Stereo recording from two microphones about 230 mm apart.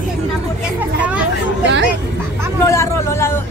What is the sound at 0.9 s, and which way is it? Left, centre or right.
Speech, centre.